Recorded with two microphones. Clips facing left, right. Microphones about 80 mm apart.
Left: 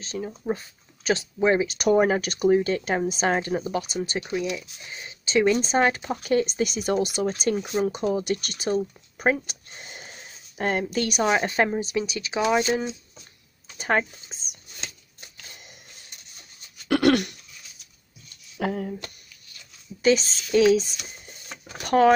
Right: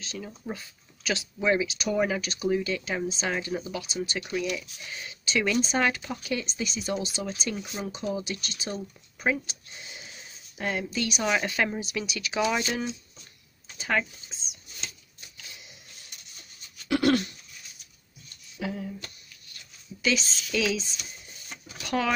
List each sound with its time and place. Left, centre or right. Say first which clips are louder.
0.0 s speech: left 7 dB; left
1.7 s speech: left 7 dB; left
4.2 s speech: left 1 dB; left
6.4 s speech: left 7 dB; left
11.2 s speech: left 4 dB; left
13.7 s shuffling cards: left 4 dB; left
16.8 s throat clearing: left 4 dB; left
18.6 s speech: left 6 dB; left
20.0 s speech: left 7 dB; left
21.5 s a sound: left 7 dB; left